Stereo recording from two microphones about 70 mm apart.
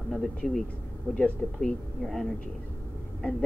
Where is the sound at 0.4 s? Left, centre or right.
Centre.